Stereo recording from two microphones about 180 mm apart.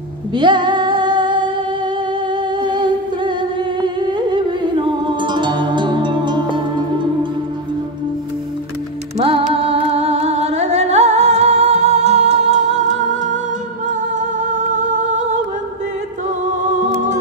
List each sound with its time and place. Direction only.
0.3 s female singing: 25° right (ahead or behind)
2.3 s music: 25° right (ahead or behind)
9.2 s music: 30° right (ahead or behind)